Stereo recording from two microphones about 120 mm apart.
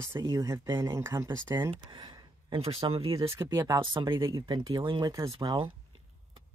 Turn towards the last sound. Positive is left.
turn(degrees=-35)  # may be behind; listen again after turning